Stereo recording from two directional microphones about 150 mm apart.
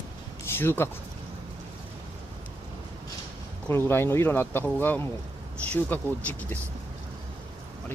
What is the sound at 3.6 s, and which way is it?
Speech, 15° left (ahead or behind).